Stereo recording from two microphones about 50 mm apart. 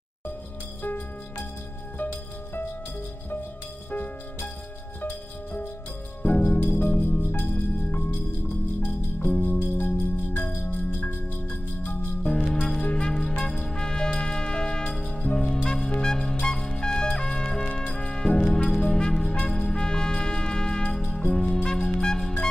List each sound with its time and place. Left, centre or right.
6.2 s music: left
7.2 s music: left
9.6 s music: left
12.2 s music: left
21.6 s wind instrument: centre